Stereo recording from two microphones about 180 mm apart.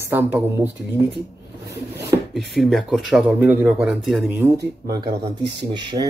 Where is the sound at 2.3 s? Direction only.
Centre (ahead or behind).